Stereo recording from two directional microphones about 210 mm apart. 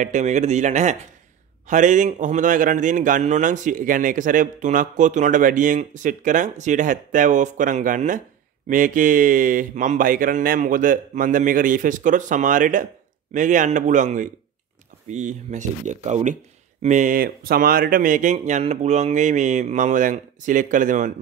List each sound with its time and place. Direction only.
0.0 s speech: 35° right (ahead or behind)